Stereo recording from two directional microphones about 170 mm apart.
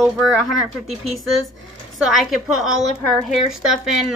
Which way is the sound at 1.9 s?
Centre (ahead or behind).